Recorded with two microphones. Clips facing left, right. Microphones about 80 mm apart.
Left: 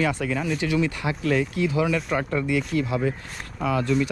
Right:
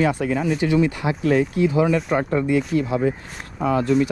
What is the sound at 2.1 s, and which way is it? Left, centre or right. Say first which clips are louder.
Speech: right 4 dB; right.